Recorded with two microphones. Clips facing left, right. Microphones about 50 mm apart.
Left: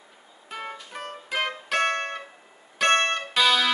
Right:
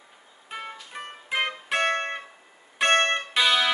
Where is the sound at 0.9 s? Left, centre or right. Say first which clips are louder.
Right 1 dB; centre.